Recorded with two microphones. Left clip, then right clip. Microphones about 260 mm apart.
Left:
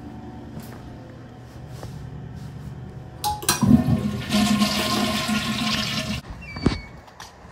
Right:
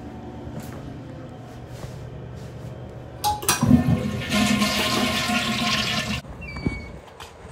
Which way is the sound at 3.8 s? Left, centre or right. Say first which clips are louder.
Right 1 dB; left.